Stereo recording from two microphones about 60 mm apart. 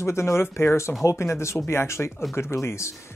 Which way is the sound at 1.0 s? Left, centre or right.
Left.